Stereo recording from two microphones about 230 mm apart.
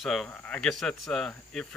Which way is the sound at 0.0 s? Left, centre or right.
Centre.